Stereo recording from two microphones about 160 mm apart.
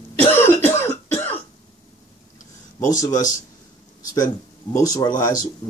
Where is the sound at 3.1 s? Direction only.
50° left (ahead or behind).